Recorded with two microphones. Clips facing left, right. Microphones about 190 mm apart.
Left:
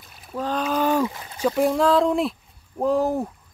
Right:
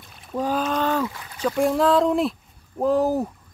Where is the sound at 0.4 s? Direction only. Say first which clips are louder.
Right 2 dB; 10° right (ahead or behind).